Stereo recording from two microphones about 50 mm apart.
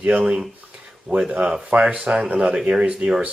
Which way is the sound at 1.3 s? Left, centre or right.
Right.